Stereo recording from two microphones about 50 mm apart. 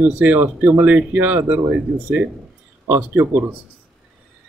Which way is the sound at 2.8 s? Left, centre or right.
Right.